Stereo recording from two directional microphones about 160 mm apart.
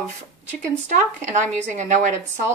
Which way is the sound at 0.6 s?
50° right (ahead or behind).